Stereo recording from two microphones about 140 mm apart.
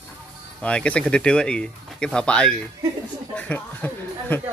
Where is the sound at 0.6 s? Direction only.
10° left (ahead or behind).